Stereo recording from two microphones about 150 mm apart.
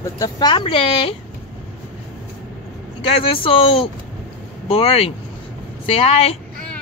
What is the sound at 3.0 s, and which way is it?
Speech, 35° left (ahead or behind).